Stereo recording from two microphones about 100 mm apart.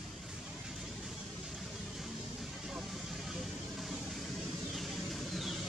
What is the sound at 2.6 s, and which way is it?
Vehicle, centre (ahead or behind).